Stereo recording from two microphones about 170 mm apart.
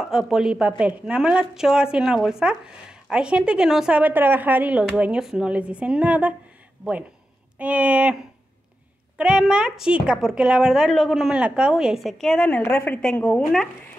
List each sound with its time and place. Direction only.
0.0 s speech: centre (ahead or behind)
9.2 s speech: 5° right (ahead or behind)